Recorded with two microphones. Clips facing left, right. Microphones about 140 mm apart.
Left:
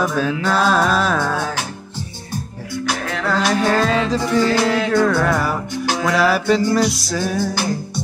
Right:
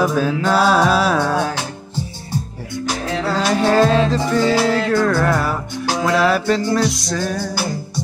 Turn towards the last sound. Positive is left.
turn(degrees=15)  # may be behind; listen again after turning